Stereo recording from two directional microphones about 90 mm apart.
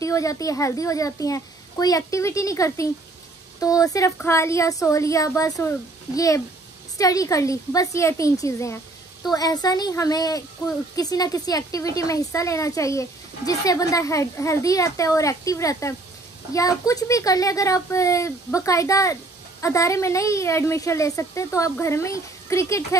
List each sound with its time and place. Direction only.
0.0 s a child's voice: 35° left (ahead or behind)
9.3 s a woman's voice: 45° left (ahead or behind)